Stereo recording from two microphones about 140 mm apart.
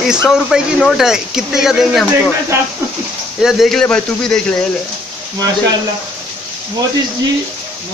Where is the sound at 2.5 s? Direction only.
20° right (ahead or behind).